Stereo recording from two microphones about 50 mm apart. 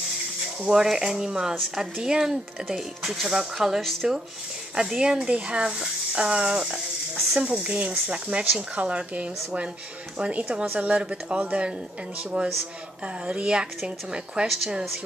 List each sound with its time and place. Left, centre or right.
0.6 s stir: centre
3.0 s speech: centre
4.0 s stir: centre
7.3 s speech: right
13.8 s stir: centre
14.5 s speech: centre